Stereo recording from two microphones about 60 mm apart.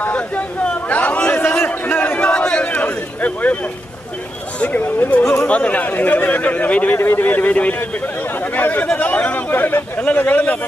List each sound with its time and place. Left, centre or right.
0.1 s chatter: left
1.9 s crowd: left
2.7 s a sound: left
4.6 s speech: left
5.3 s speech: centre
7.0 s speech: left